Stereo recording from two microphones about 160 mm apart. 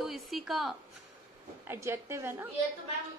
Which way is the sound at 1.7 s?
15° right (ahead or behind).